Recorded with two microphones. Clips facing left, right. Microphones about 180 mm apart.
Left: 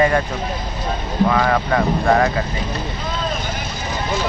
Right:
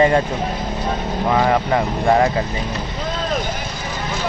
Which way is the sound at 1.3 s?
20° right (ahead or behind).